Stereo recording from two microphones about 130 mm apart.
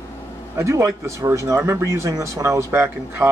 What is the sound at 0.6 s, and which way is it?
A man's voice, 25° right (ahead or behind).